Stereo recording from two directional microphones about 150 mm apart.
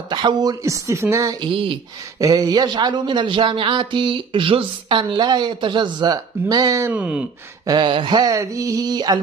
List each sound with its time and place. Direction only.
0.1 s speech: 30° right (ahead or behind)
1.5 s speech: 35° right (ahead or behind)
2.1 s speech: 25° right (ahead or behind)
6.9 s speech: 10° right (ahead or behind)
7.6 s speech: 30° right (ahead or behind)